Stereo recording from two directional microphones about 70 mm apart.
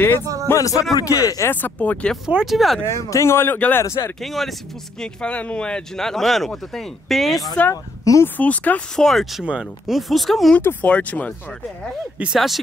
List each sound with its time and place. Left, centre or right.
0.6 s speech: left
1.5 s speech: left
2.2 s speech: centre
2.8 s speech: left
3.5 s speech: left
3.8 s speech: left
4.2 s speech: centre
5.0 s speech: centre
7.7 s speech: left
8.4 s speech: left
8.9 s speech: centre
10.6 s speech: left
10.9 s speech: centre
12.2 s speech: centre